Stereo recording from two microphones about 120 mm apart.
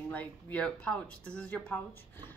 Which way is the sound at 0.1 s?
15° left (ahead or behind).